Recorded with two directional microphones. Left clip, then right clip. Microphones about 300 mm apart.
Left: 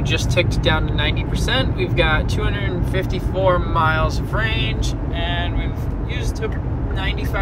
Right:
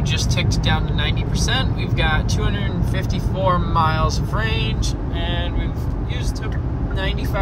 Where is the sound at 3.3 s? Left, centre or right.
Centre.